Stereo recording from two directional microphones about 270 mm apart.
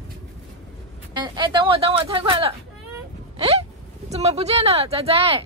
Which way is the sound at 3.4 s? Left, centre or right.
Right.